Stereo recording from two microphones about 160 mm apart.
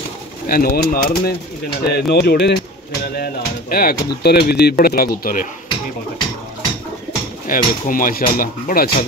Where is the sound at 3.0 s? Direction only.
75° left (ahead or behind).